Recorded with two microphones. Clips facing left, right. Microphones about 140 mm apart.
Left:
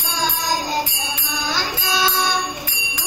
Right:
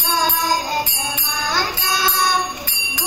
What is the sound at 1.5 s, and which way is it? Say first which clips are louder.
Bell: right 1 dB; 55° right (ahead or behind).